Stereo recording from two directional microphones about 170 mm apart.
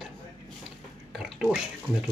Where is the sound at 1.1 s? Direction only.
Centre (ahead or behind).